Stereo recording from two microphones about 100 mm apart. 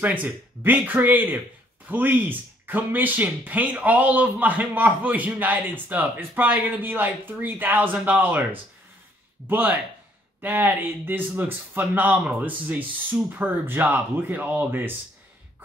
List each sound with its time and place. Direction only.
0.0 s speech: 15° right (ahead or behind)